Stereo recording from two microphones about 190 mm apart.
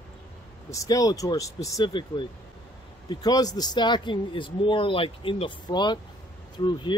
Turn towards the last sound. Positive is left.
turn(degrees=25)  # may be behind; listen again after turning